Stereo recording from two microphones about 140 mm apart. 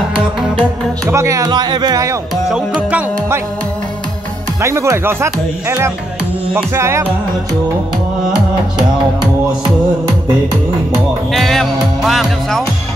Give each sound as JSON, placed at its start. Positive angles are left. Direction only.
{"t": 0.1, "sound": "music", "side_deg": -5}
{"t": 1.0, "sound": "speech", "side_deg": -20}
{"t": 2.5, "sound": "music", "side_deg": -5}
{"t": 4.6, "sound": "speech", "side_deg": -20}
{"t": 11.3, "sound": "music", "side_deg": 0}